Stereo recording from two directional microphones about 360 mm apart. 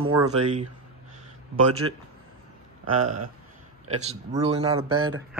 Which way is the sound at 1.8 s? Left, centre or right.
Right.